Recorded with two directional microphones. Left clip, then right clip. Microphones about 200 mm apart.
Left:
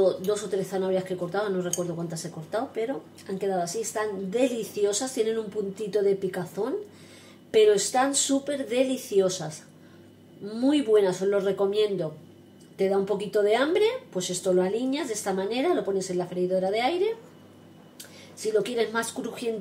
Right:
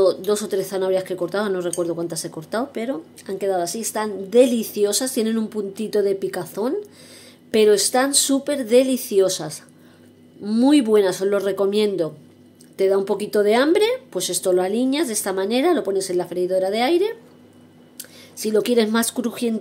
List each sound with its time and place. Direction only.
0.0 s speech: 55° right (ahead or behind)
10.5 s speech: 60° right (ahead or behind)
18.4 s speech: 60° right (ahead or behind)